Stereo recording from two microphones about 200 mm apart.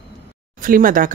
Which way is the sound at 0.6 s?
45° right (ahead or behind).